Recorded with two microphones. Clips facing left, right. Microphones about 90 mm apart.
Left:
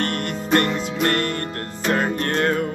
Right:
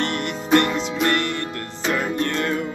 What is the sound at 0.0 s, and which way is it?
Music, 45° left (ahead or behind).